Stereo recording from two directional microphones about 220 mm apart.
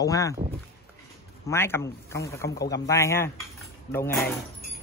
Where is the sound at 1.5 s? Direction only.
10° left (ahead or behind).